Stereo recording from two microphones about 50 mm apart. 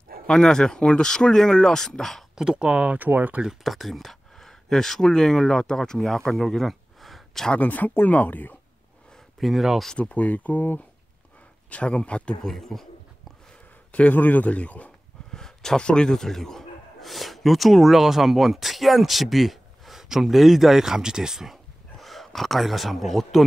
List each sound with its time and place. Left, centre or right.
0.3 s speech: centre
2.3 s speech: centre; by 3.4 s right
3.6 s speech: centre
7.5 s a man's voice: left
9.4 s speech: centre
9.9 s a man's voice: left
11.7 s speech: left
12.4 s speech: centre
13.9 s a man's voice: left
15.3 s a man's voice: centre
21.9 s speech: centre